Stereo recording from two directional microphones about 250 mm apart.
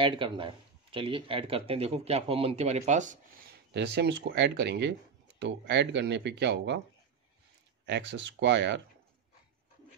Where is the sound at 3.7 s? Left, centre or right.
Right.